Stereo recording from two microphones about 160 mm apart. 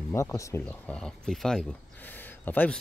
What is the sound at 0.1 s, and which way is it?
Speech, 20° left (ahead or behind).